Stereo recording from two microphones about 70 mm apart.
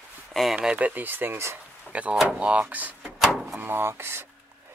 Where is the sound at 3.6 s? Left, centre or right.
Right.